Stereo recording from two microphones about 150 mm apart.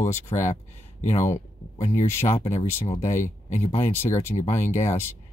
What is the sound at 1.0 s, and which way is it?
Speech, 55° left (ahead or behind).